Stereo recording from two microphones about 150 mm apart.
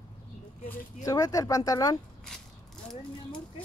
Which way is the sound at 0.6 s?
20° left (ahead or behind).